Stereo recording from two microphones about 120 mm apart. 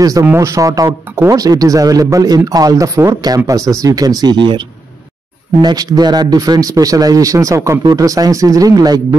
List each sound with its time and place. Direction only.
0.0 s a man's voice: 30° right (ahead or behind)